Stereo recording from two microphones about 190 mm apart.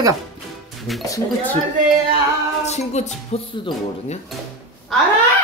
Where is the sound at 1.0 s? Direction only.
15° left (ahead or behind).